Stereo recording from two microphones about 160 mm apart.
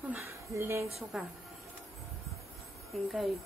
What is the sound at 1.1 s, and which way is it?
Speech, 5° right (ahead or behind).